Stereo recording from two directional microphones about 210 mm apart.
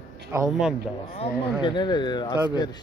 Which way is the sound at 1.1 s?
25° left (ahead or behind).